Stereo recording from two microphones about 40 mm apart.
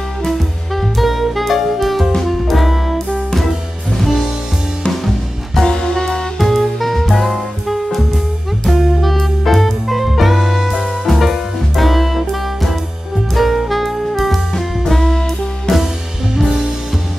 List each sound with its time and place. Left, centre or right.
0.2 s music: centre
5.0 s music: centre
5.7 s music: centre
6.3 s music: centre
13.3 s saxophone: centre
14.5 s music: centre